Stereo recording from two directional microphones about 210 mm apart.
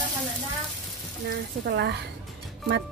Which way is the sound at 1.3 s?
55° right (ahead or behind).